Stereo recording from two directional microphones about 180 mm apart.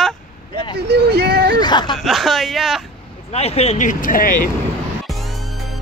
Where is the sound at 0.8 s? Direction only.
65° right (ahead or behind).